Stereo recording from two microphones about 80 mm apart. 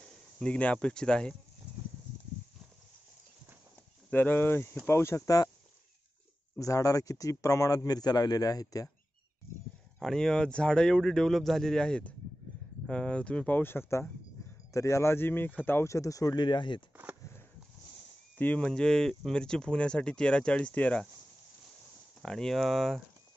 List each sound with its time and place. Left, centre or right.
0.4 s speech: centre
4.1 s speech: left
6.6 s a man's voice: left
9.9 s speech: centre
13.6 s speech: left
15.9 s a man's voice: left
16.3 s speech: left
16.9 s a sound: right
18.4 s speech: centre
18.7 s speech: centre
22.2 s speech: centre